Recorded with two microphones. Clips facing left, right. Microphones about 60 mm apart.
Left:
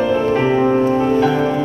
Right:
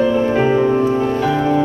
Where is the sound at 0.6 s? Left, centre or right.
Left.